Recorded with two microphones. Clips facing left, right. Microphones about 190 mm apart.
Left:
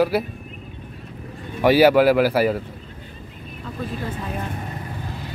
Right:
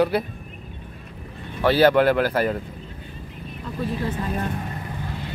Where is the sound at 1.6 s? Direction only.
10° left (ahead or behind).